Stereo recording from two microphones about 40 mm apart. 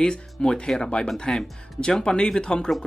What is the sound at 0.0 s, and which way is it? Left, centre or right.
Speech, left.